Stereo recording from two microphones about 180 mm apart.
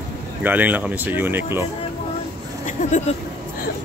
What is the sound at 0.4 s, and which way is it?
Speech, 10° right (ahead or behind).